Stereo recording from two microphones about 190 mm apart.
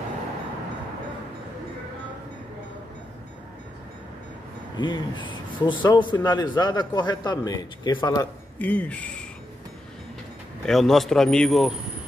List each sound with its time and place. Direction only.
4.7 s a man's voice: 25° left (ahead or behind)
8.5 s speech: 5° left (ahead or behind)
10.6 s a man's voice: centre (ahead or behind)